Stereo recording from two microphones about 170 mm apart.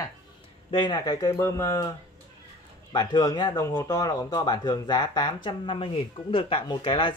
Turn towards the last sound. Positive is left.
turn(degrees=30)  # may be behind; listen again after turning